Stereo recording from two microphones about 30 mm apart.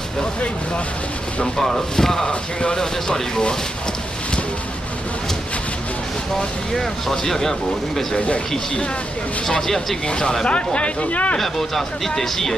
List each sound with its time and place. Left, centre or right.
1.4 s speech: centre
3.1 s speech: left
6.7 s speech: centre
9.6 s speech: centre
10.0 s speech: left
10.4 s speech: left
11.1 s speech: left
11.3 s speech: centre